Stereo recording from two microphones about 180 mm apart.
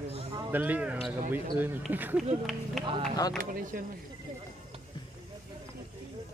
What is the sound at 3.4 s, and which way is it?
Speech, 50° right (ahead or behind).